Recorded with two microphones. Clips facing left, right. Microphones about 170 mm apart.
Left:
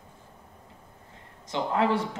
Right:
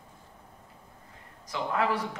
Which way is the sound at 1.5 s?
25° left (ahead or behind).